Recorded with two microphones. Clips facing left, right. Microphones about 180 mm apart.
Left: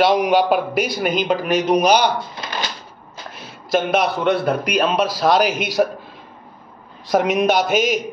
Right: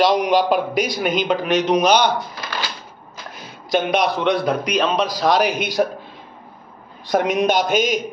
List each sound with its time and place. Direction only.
0.0 s a man's voice: 5° left (ahead or behind)
2.4 s cash register: 20° left (ahead or behind)
3.4 s a man's voice: centre (ahead or behind)
7.1 s a man's voice: centre (ahead or behind)